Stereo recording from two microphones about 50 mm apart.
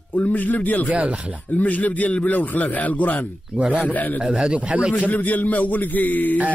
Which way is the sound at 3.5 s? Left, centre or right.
Right.